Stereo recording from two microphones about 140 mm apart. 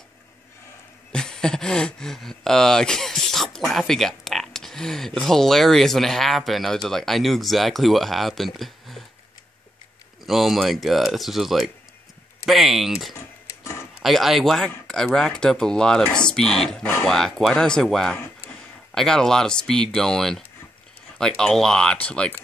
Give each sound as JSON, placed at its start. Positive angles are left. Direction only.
{"t": 1.1, "sound": "speech", "side_deg": 5}
{"t": 10.2, "sound": "speech", "side_deg": 0}